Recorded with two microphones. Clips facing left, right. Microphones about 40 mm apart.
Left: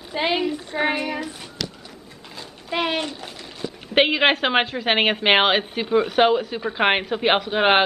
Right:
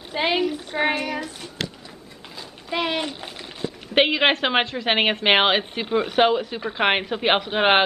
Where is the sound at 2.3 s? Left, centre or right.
Centre.